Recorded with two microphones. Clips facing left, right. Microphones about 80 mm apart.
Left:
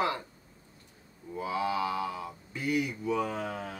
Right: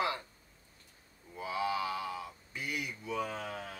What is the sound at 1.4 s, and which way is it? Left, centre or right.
Mantra, left.